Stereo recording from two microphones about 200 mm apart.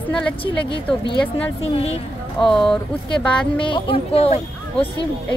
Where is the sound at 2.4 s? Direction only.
Centre (ahead or behind).